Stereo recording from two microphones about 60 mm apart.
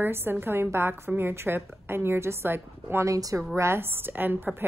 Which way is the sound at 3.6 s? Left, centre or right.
Right.